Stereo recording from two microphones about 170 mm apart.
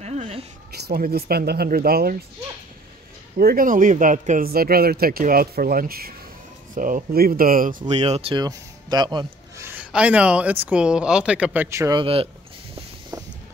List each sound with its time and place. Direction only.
0.0 s a sound: 35° right (ahead or behind)
0.8 s speech: 65° right (ahead or behind)
3.3 s speech: 60° right (ahead or behind)
7.9 s speech: 40° right (ahead or behind)
8.5 s a sound: 25° right (ahead or behind)
9.7 s speech: 10° right (ahead or behind)
12.0 s speech: 35° right (ahead or behind)
13.1 s vehicle: 20° right (ahead or behind)